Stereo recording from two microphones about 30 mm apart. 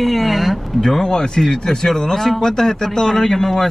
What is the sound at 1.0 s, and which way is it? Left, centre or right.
Speech, left.